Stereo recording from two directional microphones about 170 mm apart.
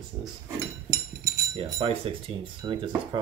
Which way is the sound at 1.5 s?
35° right (ahead or behind).